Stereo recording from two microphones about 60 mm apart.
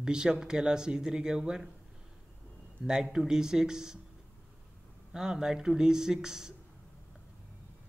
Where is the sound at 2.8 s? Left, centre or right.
Centre.